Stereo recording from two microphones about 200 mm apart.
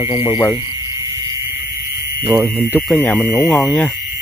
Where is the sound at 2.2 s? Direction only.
25° right (ahead or behind).